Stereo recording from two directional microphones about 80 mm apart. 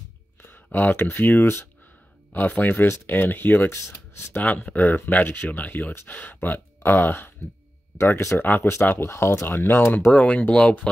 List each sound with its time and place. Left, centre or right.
0.4 s speech: left
4.4 s speech: left